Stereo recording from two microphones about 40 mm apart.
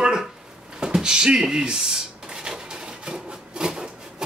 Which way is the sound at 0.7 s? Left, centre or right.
Centre.